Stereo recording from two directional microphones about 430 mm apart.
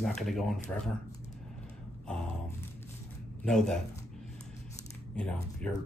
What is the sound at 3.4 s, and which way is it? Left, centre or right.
Speech, centre.